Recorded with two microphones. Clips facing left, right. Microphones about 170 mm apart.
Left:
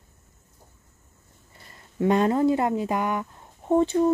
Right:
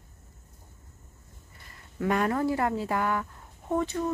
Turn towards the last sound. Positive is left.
turn(degrees=30)  # may be behind; listen again after turning